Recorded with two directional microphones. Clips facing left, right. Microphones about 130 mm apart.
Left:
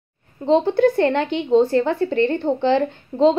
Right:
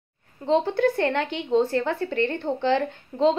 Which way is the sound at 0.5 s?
25° left (ahead or behind).